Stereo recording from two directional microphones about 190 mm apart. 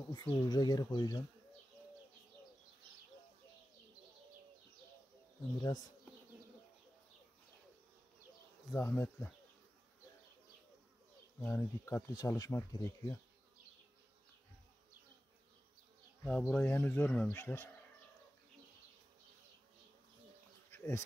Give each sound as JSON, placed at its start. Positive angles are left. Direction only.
{"t": 0.1, "sound": "speech", "side_deg": 20}
{"t": 8.7, "sound": "speech", "side_deg": 10}
{"t": 11.4, "sound": "speech", "side_deg": 10}
{"t": 16.3, "sound": "speech", "side_deg": 5}
{"t": 20.7, "sound": "bee", "side_deg": 15}